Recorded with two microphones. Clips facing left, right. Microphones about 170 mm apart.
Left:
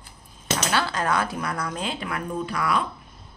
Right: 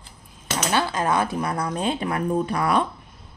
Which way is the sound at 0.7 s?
20° right (ahead or behind).